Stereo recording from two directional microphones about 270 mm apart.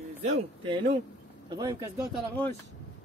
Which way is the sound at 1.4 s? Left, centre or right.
Centre.